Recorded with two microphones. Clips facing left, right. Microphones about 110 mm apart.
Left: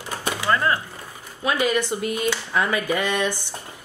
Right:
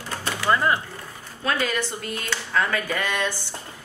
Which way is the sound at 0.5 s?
15° right (ahead or behind).